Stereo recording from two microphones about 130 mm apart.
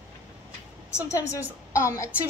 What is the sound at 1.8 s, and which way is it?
Speech, 25° left (ahead or behind).